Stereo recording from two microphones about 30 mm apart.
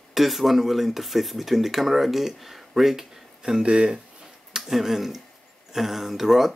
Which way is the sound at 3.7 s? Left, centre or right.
Right.